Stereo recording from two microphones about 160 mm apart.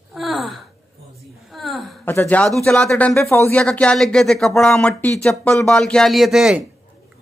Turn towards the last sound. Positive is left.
turn(degrees=-5)  # may be behind; listen again after turning